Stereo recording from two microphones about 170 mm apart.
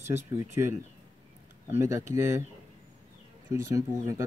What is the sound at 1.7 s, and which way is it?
Speech, 15° right (ahead or behind).